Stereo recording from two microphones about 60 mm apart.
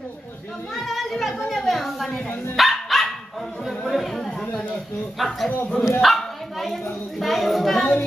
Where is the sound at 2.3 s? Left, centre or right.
Left.